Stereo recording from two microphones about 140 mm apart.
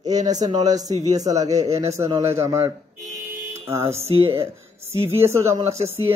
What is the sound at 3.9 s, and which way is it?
Speech, 45° right (ahead or behind).